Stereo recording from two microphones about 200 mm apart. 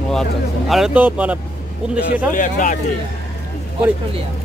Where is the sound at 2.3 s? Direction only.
40° left (ahead or behind).